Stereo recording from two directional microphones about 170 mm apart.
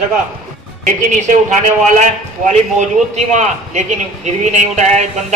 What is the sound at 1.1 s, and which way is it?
A man's voice, 45° right (ahead or behind).